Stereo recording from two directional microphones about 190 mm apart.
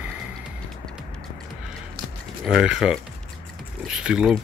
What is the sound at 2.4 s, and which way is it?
Speech, centre (ahead or behind).